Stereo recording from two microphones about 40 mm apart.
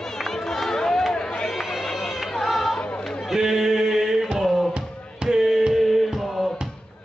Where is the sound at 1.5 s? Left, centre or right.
Centre.